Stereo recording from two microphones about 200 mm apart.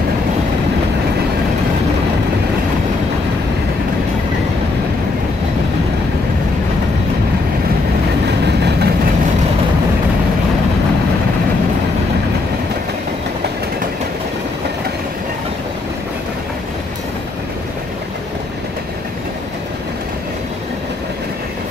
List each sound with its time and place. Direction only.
8.5 s train: 55° right (ahead or behind)